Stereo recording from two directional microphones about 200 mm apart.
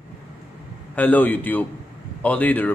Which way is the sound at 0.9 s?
10° left (ahead or behind).